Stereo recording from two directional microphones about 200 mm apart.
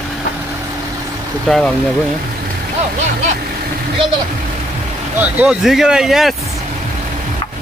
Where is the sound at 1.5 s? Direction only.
Centre (ahead or behind).